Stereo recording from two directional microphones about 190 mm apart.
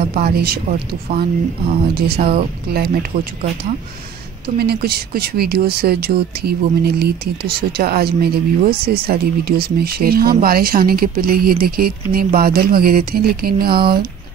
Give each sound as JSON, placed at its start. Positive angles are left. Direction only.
{"t": 0.1, "sound": "speech", "side_deg": -50}
{"t": 4.6, "sound": "speech", "side_deg": -55}